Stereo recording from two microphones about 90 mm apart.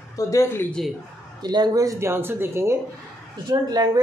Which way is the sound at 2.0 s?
25° right (ahead or behind).